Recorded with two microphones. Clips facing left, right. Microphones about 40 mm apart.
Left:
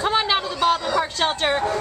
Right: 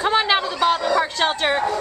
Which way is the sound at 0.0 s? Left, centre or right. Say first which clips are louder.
Right 2 dB; centre.